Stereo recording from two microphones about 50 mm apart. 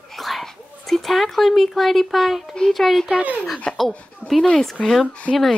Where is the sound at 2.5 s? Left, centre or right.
Centre.